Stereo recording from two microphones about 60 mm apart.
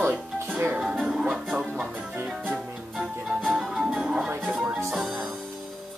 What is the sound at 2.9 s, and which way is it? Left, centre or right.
Music, centre.